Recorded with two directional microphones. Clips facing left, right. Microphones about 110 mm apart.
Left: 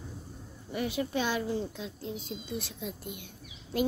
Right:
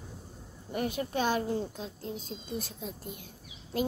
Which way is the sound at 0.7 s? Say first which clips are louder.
Even; 45° right (ahead or behind).